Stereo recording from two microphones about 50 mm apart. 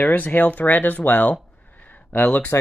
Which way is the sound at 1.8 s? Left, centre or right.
Left.